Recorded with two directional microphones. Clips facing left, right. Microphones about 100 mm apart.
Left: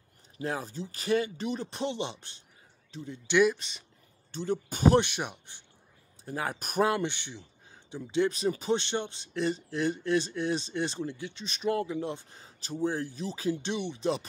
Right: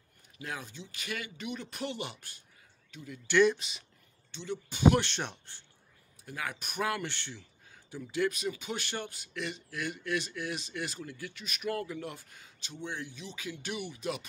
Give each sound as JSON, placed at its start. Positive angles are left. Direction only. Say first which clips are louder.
{"t": 0.4, "sound": "speech", "louder": "left 7 dB", "side_deg": 35}
{"t": 3.5, "sound": "speech", "louder": "even", "side_deg": -5}
{"t": 4.3, "sound": "speech", "louder": "left 7 dB", "side_deg": 40}
{"t": 5.0, "sound": "speech", "louder": "left 2 dB", "side_deg": 10}
{"t": 6.2, "sound": "speech", "louder": "left 5 dB", "side_deg": 35}
{"t": 6.9, "sound": "speech", "louder": "left 5 dB", "side_deg": 20}